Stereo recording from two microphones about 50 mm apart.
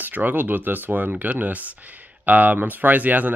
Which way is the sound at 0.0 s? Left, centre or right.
Right.